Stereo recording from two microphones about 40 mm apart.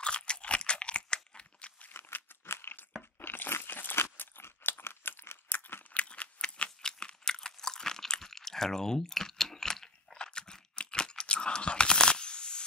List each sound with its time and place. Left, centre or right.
0.0 s crunch: left
1.9 s crumpling: left
2.4 s a sound: left
3.2 s crunch: left
5.9 s a sound: left
6.8 s crunch: centre